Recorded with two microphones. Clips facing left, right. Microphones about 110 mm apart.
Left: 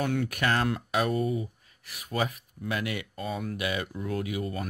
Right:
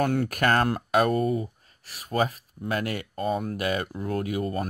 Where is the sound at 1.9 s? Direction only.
35° right (ahead or behind).